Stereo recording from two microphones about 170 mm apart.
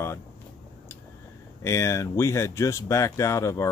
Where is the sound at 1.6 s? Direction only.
15° left (ahead or behind).